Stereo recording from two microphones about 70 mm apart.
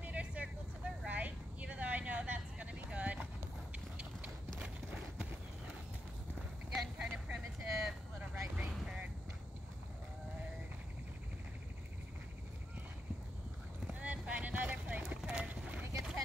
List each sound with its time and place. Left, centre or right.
0.0 s vehicle: centre
3.7 s clip-clop: centre
4.6 s a sound: centre
6.7 s vehicle: centre
7.2 s vehicle: centre
13.9 s clip-clop: right